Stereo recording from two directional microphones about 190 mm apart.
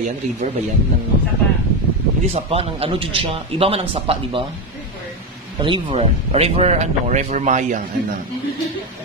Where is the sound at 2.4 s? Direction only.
30° right (ahead or behind).